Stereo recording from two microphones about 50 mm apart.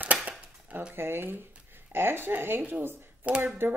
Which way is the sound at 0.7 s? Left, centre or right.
Right.